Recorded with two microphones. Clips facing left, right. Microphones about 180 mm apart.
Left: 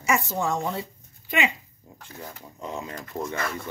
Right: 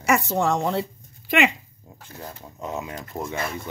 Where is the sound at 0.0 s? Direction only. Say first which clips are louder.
Right 4 dB; 70° right (ahead or behind).